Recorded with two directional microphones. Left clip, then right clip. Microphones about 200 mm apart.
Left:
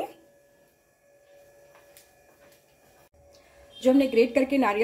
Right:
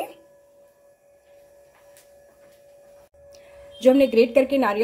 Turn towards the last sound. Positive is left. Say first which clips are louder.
# right 4 dB
turn(degrees=-15)  # may be behind; listen again after turning